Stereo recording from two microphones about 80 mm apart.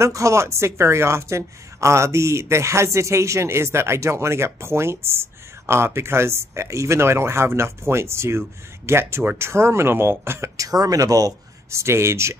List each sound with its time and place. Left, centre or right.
0.0 s speech: right
10.7 s speech: right